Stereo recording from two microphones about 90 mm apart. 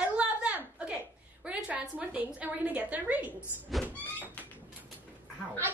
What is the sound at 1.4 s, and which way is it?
A woman's voice, 15° right (ahead or behind).